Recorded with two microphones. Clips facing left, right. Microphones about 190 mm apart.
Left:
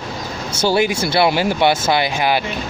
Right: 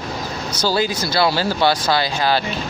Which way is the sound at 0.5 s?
20° left (ahead or behind).